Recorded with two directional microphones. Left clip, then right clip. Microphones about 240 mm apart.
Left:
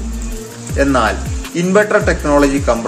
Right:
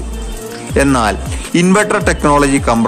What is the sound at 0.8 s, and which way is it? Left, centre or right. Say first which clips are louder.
Speech: right 1 dB; right.